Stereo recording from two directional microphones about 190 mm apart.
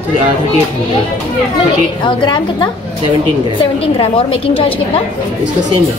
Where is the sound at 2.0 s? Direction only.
25° left (ahead or behind).